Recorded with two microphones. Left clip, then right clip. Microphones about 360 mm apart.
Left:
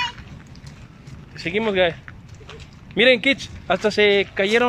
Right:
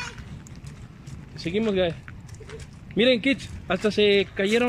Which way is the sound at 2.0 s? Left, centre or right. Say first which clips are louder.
Left 2 dB; centre.